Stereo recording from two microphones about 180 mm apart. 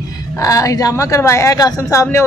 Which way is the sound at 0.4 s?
20° left (ahead or behind).